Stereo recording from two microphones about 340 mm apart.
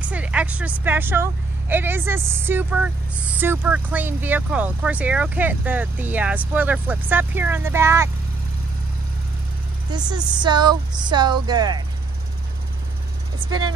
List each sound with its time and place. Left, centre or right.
0.0 s speech: centre
9.9 s speech: centre
13.5 s speech: right